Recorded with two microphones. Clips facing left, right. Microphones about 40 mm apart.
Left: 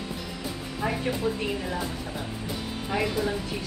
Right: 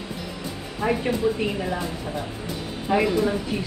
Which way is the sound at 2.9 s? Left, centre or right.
Centre.